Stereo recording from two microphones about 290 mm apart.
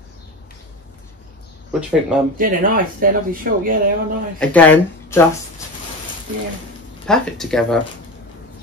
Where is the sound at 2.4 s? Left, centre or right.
Right.